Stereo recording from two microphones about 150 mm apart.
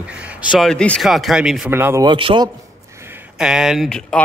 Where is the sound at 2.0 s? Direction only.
35° right (ahead or behind).